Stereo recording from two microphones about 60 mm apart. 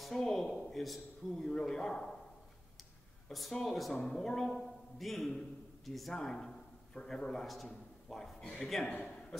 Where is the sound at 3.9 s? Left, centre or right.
Centre.